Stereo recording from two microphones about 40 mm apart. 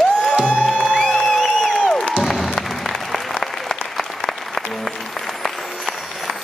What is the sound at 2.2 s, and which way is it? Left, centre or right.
Applause, centre.